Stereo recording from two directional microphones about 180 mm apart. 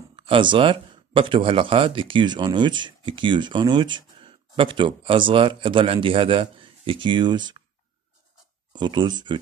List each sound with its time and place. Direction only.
0.1 s speech: 25° right (ahead or behind)
8.7 s speech: 25° right (ahead or behind)